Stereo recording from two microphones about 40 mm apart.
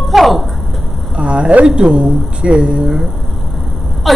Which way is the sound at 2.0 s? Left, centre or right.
Right.